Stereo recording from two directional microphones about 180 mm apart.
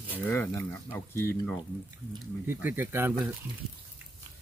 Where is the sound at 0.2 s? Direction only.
10° left (ahead or behind).